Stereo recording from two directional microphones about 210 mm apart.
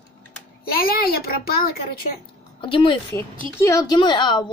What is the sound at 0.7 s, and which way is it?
A child's voice, 45° left (ahead or behind).